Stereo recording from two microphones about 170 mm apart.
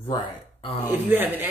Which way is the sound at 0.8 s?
10° right (ahead or behind).